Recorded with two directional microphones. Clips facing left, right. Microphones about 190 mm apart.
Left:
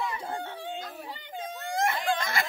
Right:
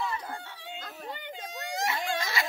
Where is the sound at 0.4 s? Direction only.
50° left (ahead or behind).